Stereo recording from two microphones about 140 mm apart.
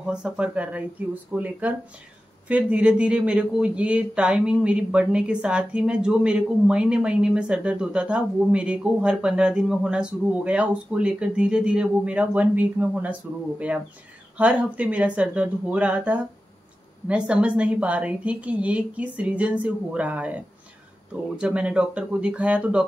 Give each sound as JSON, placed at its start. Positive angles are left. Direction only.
{"t": 0.0, "sound": "speech", "side_deg": -5}
{"t": 21.4, "sound": "speech", "side_deg": -10}